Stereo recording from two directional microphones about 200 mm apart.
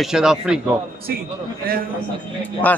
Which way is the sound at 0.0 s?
5° right (ahead or behind).